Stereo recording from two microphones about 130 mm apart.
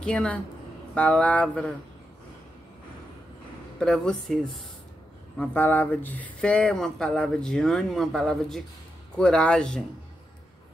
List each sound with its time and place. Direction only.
0.0 s speech: 5° left (ahead or behind)
3.8 s speech: 5° left (ahead or behind)
5.4 s speech: 15° left (ahead or behind)